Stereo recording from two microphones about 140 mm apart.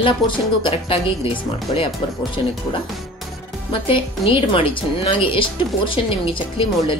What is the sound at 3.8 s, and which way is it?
Speech, 40° left (ahead or behind).